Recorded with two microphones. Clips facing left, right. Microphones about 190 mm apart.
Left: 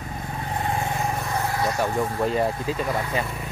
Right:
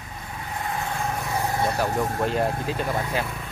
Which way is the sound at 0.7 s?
25° left (ahead or behind).